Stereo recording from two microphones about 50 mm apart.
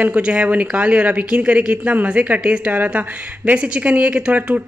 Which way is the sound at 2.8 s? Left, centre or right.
Right.